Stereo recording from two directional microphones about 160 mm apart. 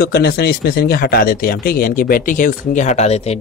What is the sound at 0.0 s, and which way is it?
Speech, 75° left (ahead or behind).